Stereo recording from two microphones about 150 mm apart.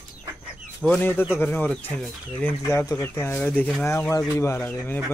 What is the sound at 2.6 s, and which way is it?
Speech, 20° left (ahead or behind).